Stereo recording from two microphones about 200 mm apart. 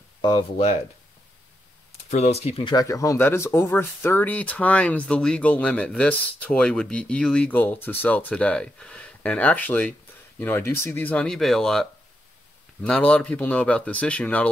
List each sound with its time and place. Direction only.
0.2 s speech: 25° left (ahead or behind)
2.0 s speech: 30° left (ahead or behind); by 14.5 s 5° left (ahead or behind)